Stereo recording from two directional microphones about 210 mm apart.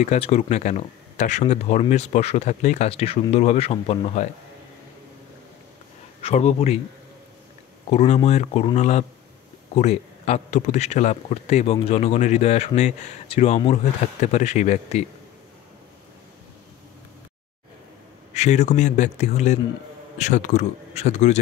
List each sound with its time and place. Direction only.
0.0 s speech: 30° left (ahead or behind)
6.2 s speech: 30° left (ahead or behind)
7.9 s speech: 30° left (ahead or behind)
18.3 s speech: 35° left (ahead or behind)